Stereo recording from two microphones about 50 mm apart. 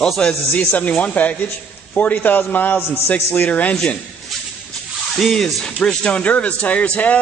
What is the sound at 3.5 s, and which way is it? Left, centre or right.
Speech, left.